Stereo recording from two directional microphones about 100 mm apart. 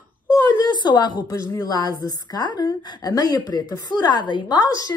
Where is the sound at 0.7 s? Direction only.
50° left (ahead or behind).